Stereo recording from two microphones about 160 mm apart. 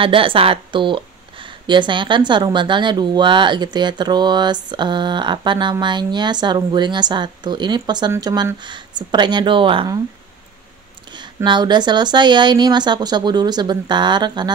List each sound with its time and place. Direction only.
0.0 s speech: 35° right (ahead or behind)
11.1 s speech: 30° right (ahead or behind)